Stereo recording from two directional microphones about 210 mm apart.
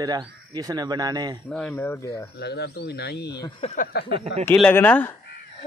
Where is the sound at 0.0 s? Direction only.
20° right (ahead or behind).